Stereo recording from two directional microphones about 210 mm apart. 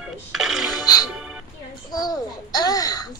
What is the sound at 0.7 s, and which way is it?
Music, 20° left (ahead or behind).